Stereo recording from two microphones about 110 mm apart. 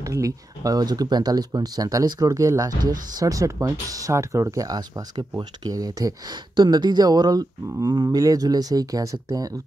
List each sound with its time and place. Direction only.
0.0 s speech: 30° right (ahead or behind)